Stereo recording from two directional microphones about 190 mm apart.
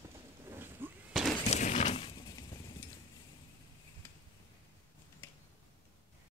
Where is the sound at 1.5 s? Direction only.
40° left (ahead or behind).